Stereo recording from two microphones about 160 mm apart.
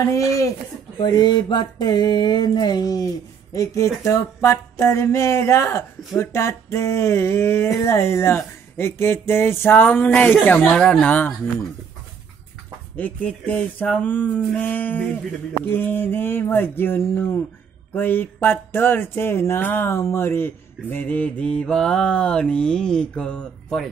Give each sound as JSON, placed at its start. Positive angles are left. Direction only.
{"t": 0.0, "sound": "speech", "side_deg": 20}
{"t": 12.9, "sound": "speech", "side_deg": 10}
{"t": 20.9, "sound": "mantra", "side_deg": 10}